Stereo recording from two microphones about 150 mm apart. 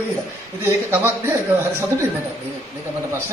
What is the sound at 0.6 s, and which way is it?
Speech, 15° right (ahead or behind).